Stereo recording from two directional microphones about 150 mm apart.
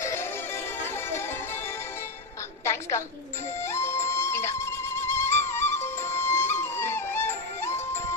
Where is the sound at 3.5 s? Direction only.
15° left (ahead or behind).